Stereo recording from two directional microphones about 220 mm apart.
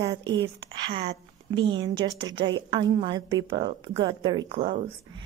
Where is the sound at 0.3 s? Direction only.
20° right (ahead or behind).